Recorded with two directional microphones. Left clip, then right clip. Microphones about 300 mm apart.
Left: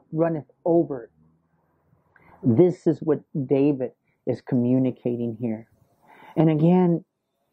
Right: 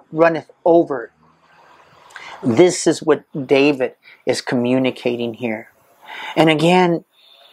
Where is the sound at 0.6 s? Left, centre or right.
Right.